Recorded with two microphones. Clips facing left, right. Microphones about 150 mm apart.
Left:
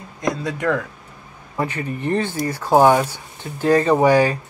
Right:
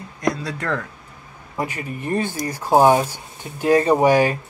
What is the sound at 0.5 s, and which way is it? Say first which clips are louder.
Speech: left 4 dB; 15° left (ahead or behind).